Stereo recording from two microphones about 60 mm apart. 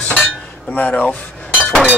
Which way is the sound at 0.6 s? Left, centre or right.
Left.